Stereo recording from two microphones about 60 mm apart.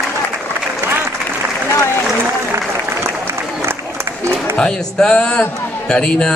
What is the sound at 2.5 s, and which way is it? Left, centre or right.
Applause, right.